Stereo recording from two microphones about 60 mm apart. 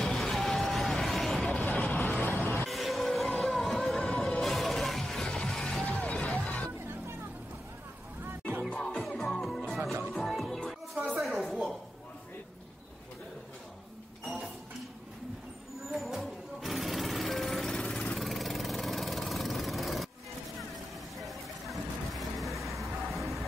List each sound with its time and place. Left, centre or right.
0.0 s vehicle: centre
1.5 s vehicle: left
2.0 s music: left
2.6 s music: centre
5.9 s music: left
6.3 s a sound: left
8.9 s music: centre
16.0 s music: centre
20.7 s vehicle: centre
22.8 s music: centre